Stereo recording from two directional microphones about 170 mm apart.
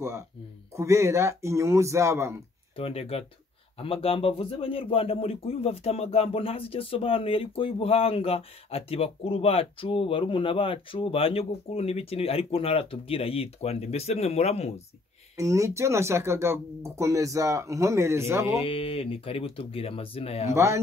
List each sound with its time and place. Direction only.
0.7 s speech: 15° right (ahead or behind)
2.7 s speech: 35° left (ahead or behind)
15.3 s speech: 20° right (ahead or behind)
18.5 s speech: 35° left (ahead or behind)
20.4 s speech: 15° right (ahead or behind)